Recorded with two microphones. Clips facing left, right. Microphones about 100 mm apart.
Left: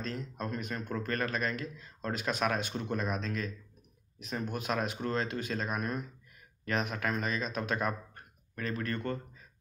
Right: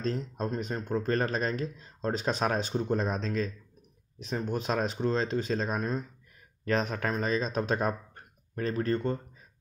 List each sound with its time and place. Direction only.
0.0 s speech: 30° right (ahead or behind)